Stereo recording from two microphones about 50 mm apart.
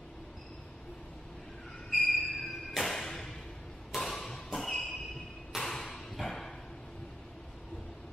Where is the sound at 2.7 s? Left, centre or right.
Centre.